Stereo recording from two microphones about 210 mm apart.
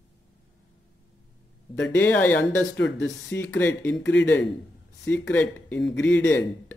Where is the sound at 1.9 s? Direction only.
10° left (ahead or behind).